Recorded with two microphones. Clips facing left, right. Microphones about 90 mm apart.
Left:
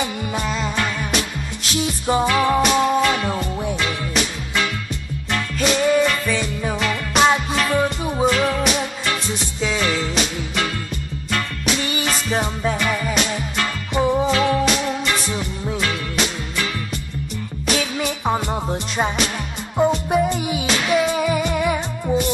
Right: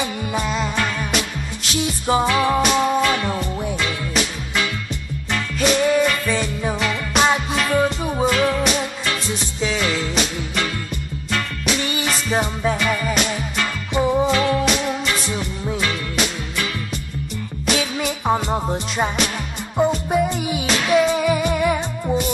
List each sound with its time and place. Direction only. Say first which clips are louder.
0.3 s music: right 1 dB; 5° right (ahead or behind)
2.2 s music: left 3 dB; centre (ahead or behind)
12.3 s music: right 3 dB; 5° right (ahead or behind)
18.7 s music: even; 5° right (ahead or behind)